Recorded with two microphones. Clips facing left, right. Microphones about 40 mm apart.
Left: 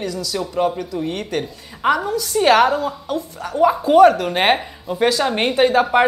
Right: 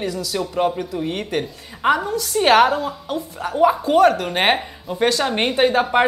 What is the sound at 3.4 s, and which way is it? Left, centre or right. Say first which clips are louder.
Speech: even; centre.